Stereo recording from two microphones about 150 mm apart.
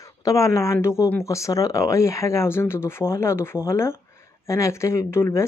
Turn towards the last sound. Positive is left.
turn(degrees=15)  # may be behind; listen again after turning